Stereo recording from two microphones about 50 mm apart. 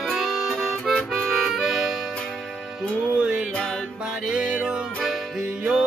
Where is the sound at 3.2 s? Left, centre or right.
Right.